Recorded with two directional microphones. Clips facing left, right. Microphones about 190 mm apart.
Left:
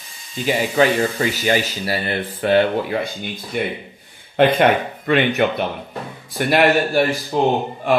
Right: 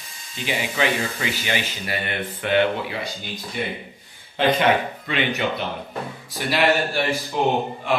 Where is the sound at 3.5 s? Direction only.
55° left (ahead or behind).